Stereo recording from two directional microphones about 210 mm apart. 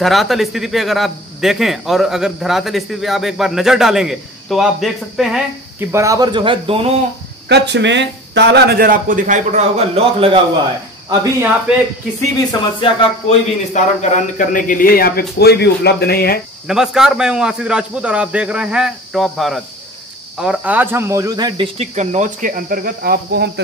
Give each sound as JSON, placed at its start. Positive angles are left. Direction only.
{"t": 0.0, "sound": "speech", "side_deg": 0}
{"t": 7.4, "sound": "speech", "side_deg": -55}
{"t": 12.4, "sound": "a man's voice", "side_deg": 20}
{"t": 16.6, "sound": "speech", "side_deg": 0}